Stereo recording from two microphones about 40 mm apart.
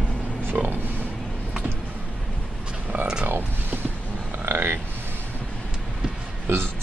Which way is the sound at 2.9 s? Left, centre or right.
Right.